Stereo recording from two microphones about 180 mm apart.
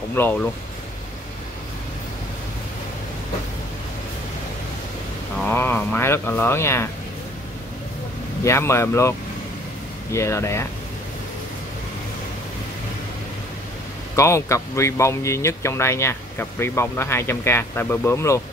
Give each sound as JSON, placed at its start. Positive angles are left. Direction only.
{"t": 0.1, "sound": "speech", "side_deg": 10}
{"t": 5.4, "sound": "speech", "side_deg": 10}
{"t": 8.5, "sound": "speech", "side_deg": 15}
{"t": 10.1, "sound": "speech", "side_deg": 15}
{"t": 14.1, "sound": "speech", "side_deg": 15}